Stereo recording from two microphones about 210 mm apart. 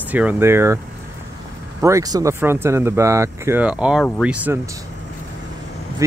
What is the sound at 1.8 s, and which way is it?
Speech, 15° right (ahead or behind).